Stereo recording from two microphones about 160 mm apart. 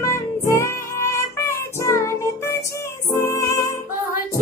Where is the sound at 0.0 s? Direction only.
20° left (ahead or behind).